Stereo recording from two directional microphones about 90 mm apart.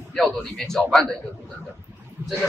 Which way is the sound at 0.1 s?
5° left (ahead or behind).